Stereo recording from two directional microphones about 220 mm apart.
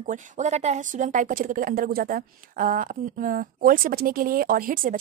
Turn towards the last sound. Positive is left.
turn(degrees=-40)  # may be behind; listen again after turning